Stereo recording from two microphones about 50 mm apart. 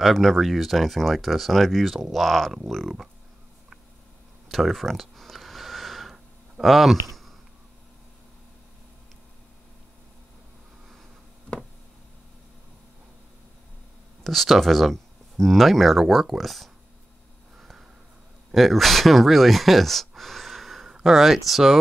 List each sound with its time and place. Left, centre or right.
0.0 s speech: centre
4.5 s a sound: centre
6.6 s speech: centre
14.2 s speech: centre
17.6 s a sound: centre
18.5 s speech: centre